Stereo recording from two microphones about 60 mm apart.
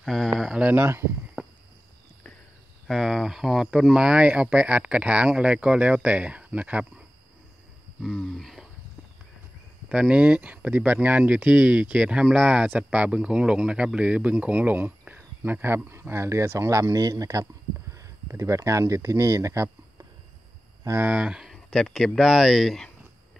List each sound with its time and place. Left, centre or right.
0.0 s speech: centre
0.6 s speech: right
0.8 s speech: right
1.4 s a sound: centre
2.9 s speech: centre; by 7.1 s right
8.0 s speech: centre
9.8 s speech: centre; by 16.9 s right
16.9 s speech: right
21.0 s speech: right
21.6 s speech: centre